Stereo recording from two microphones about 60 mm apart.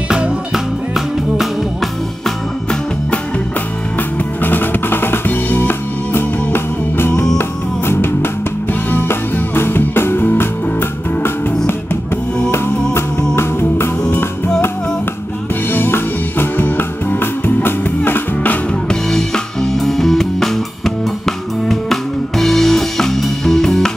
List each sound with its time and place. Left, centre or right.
0.1 s music: centre
4.4 s drum: left
7.3 s music: left
15.7 s music: left
18.9 s music: centre